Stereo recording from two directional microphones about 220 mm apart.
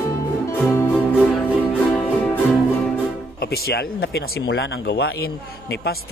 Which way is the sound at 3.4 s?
45° left (ahead or behind).